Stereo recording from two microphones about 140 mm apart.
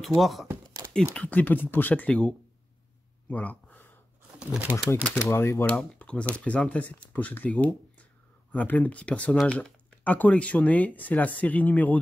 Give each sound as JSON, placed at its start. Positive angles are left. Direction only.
{"t": 0.0, "sound": "speech", "side_deg": 0}
{"t": 0.8, "sound": "a sound", "side_deg": -20}
{"t": 1.1, "sound": "speech", "side_deg": 10}
{"t": 3.3, "sound": "a sound", "side_deg": 10}
{"t": 4.4, "sound": "speech", "side_deg": -10}
{"t": 5.0, "sound": "speech", "side_deg": 15}